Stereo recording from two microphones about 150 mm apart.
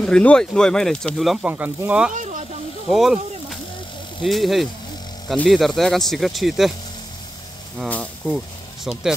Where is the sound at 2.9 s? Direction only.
Centre (ahead or behind).